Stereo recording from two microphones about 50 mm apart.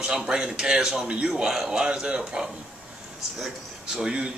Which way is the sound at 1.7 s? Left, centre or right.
Centre.